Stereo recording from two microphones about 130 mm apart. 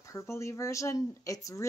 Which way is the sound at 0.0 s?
20° left (ahead or behind).